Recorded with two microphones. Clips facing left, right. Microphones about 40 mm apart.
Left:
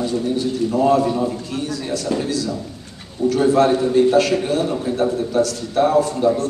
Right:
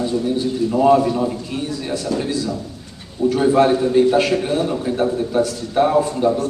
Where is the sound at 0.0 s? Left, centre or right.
Right.